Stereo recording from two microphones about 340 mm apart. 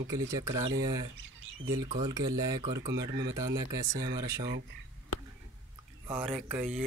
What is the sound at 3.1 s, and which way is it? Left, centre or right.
Speech, right.